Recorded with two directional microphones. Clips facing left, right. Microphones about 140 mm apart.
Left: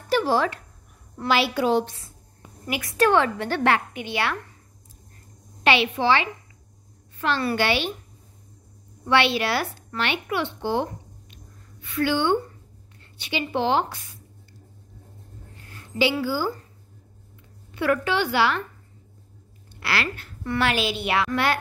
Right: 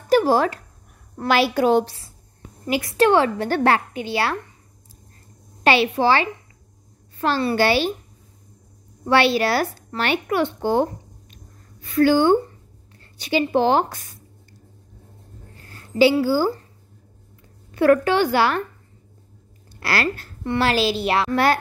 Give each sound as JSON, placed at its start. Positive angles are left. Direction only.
{"t": 0.1, "sound": "a woman's voice", "side_deg": -45}
{"t": 1.9, "sound": "a woman's voice", "side_deg": -30}
{"t": 5.6, "sound": "a woman's voice", "side_deg": -40}
{"t": 9.0, "sound": "a woman's voice", "side_deg": -40}
{"t": 15.6, "sound": "a sound", "side_deg": -40}
{"t": 17.6, "sound": "a woman's voice", "side_deg": -45}
{"t": 19.8, "sound": "a woman's voice", "side_deg": -40}